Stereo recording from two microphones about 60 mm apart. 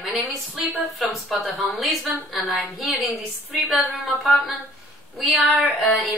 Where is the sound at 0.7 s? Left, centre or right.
Centre.